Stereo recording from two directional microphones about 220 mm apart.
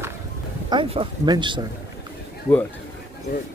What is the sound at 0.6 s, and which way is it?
Speech, 25° right (ahead or behind).